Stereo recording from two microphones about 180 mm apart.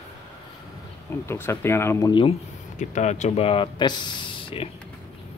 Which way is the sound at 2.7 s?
40° left (ahead or behind).